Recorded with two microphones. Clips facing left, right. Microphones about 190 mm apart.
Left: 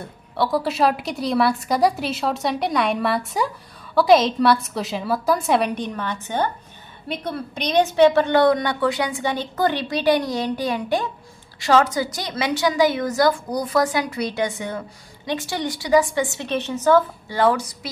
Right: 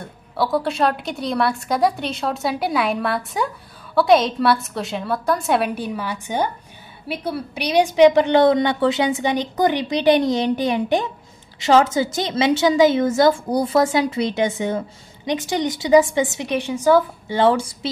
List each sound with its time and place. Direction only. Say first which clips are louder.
0.0 s a woman's voice: even; centre (ahead or behind)
17.4 s a woman's voice: right 2 dB; 25° right (ahead or behind)